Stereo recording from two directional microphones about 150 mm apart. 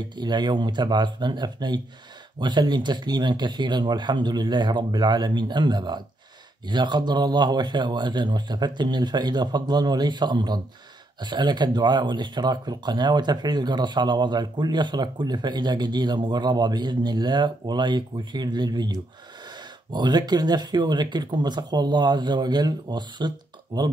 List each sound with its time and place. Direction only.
0.1 s speech: 30° right (ahead or behind)